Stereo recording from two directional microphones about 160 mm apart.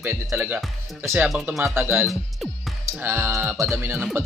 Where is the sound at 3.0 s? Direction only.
15° right (ahead or behind).